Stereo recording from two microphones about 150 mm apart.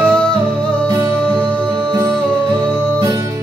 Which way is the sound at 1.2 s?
10° left (ahead or behind).